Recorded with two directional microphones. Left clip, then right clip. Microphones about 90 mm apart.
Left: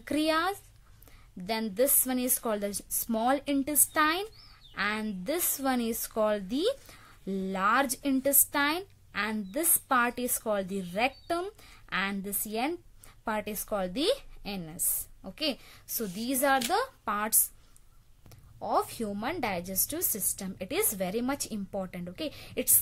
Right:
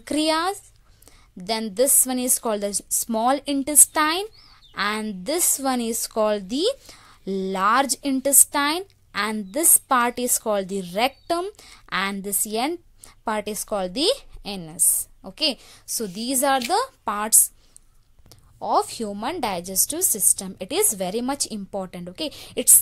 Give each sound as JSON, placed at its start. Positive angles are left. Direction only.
{"t": 0.0, "sound": "a woman's voice", "side_deg": -45}
{"t": 13.2, "sound": "a woman's voice", "side_deg": -50}
{"t": 19.4, "sound": "a woman's voice", "side_deg": -45}